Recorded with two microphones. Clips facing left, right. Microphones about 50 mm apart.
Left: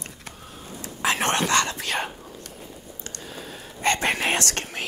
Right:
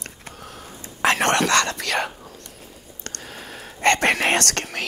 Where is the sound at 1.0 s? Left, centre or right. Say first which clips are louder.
Right 4 dB; right.